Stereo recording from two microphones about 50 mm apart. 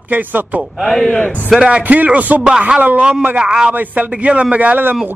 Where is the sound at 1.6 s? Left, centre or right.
Right.